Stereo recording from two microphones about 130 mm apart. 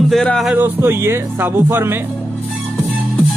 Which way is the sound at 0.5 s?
15° right (ahead or behind).